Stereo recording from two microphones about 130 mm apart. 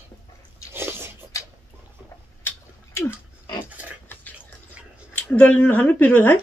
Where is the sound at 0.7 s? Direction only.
15° right (ahead or behind).